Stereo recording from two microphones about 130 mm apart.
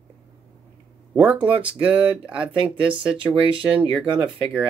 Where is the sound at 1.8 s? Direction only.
10° right (ahead or behind).